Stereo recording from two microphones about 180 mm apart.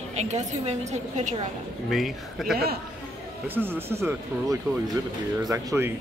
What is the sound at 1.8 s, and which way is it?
Speech, centre (ahead or behind).